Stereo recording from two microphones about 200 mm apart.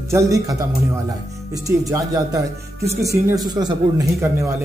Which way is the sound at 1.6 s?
15° right (ahead or behind).